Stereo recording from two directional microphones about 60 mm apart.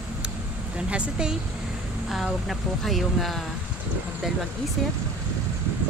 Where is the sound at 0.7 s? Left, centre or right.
Centre.